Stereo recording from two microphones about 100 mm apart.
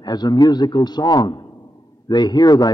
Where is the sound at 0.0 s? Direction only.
45° left (ahead or behind).